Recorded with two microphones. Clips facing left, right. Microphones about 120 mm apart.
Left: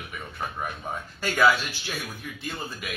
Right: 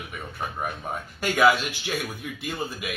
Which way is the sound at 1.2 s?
15° right (ahead or behind).